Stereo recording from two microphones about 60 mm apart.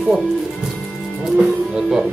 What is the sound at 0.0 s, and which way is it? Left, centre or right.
Speech, centre.